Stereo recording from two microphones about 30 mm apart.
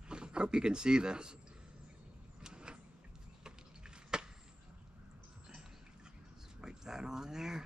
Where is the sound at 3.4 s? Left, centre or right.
Right.